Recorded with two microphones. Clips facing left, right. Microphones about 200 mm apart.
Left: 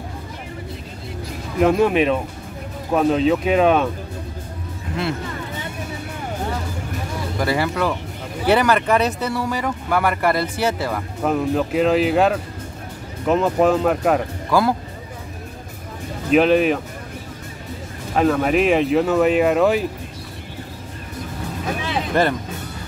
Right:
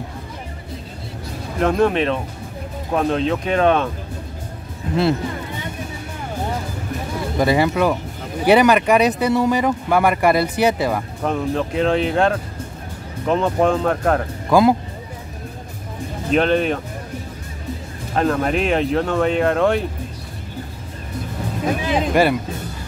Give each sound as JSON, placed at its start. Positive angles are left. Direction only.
{"t": 1.6, "sound": "speech", "side_deg": 5}
{"t": 7.3, "sound": "speech", "side_deg": -20}
{"t": 11.2, "sound": "speech", "side_deg": 5}
{"t": 14.5, "sound": "speech", "side_deg": -15}
{"t": 16.3, "sound": "speech", "side_deg": 5}
{"t": 18.1, "sound": "speech", "side_deg": 5}
{"t": 21.9, "sound": "music", "side_deg": -10}